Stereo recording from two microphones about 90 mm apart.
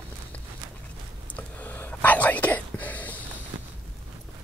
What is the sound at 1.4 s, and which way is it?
Whispering, 15° left (ahead or behind).